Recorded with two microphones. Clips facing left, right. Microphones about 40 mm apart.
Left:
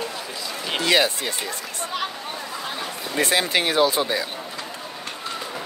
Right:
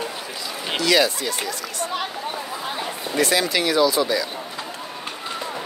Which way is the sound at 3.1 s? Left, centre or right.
Left.